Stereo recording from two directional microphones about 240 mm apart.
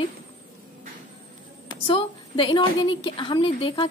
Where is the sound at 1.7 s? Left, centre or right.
Left.